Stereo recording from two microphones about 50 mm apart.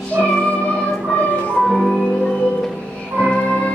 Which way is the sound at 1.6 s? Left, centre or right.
Centre.